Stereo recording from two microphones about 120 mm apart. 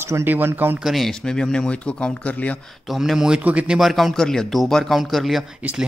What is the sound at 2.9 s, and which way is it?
A man's voice, 5° right (ahead or behind).